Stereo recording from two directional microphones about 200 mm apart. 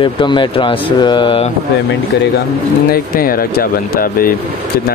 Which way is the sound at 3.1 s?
45° left (ahead or behind).